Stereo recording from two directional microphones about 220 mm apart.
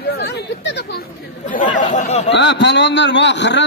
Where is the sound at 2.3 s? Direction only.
50° left (ahead or behind).